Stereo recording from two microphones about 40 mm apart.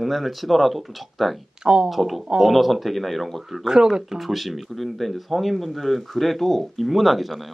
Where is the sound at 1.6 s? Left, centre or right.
Right.